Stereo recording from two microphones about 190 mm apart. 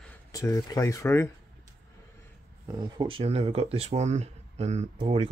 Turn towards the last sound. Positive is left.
turn(degrees=-30)  # may be behind; listen again after turning